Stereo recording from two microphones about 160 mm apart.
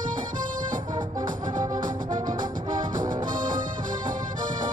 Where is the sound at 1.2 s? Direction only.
50° right (ahead or behind).